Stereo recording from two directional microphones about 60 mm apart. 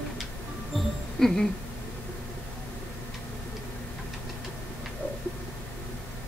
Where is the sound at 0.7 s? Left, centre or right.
Centre.